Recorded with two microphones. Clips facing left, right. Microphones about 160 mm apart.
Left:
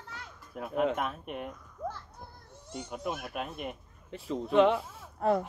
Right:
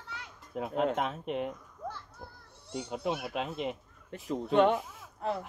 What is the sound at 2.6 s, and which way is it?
Speech, 10° right (ahead or behind).